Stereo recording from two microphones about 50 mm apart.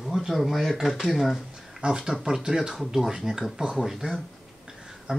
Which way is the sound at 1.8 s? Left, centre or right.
Centre.